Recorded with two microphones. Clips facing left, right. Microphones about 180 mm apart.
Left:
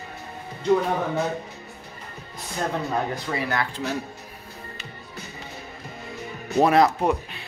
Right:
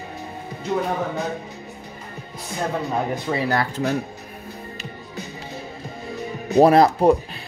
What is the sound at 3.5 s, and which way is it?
Speech, 40° right (ahead or behind).